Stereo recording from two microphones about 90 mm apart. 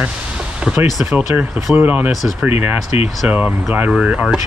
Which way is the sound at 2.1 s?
Centre (ahead or behind).